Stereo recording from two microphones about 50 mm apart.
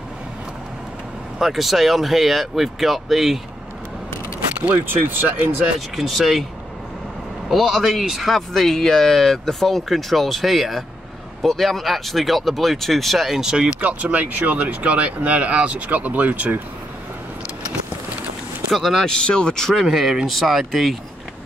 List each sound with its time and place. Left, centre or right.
1.4 s a man's voice: centre
4.6 s speech: right
4.8 s speech: right
5.9 s a man's voice: centre
7.4 s a man's voice: centre
13.7 s speech: right
18.7 s a man's voice: centre
19.0 s speech: centre
19.7 s a man's voice: centre